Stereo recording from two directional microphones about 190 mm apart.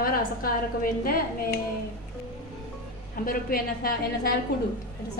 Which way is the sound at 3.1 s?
50° left (ahead or behind).